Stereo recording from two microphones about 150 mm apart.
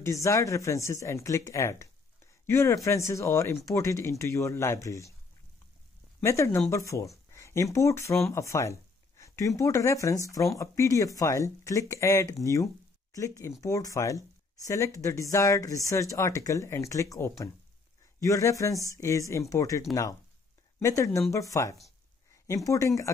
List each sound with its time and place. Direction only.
0.0 s speech: 20° left (ahead or behind)
6.2 s speech: 20° left (ahead or behind)